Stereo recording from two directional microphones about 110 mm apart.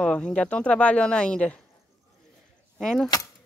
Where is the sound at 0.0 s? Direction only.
10° left (ahead or behind).